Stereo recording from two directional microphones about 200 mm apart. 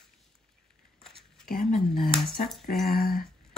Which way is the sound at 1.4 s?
45° left (ahead or behind).